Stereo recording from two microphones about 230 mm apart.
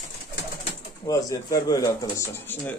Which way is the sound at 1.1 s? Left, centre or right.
Centre.